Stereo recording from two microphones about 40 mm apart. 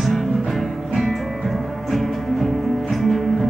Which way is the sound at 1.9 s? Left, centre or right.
Centre.